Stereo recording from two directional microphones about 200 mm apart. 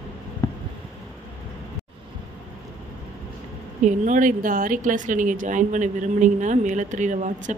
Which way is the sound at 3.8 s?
40° right (ahead or behind).